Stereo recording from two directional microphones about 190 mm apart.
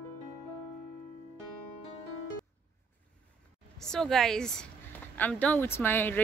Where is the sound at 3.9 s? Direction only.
Centre (ahead or behind).